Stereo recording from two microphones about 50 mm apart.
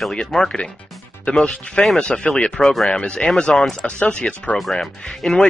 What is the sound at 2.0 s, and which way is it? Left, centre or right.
Speech, left.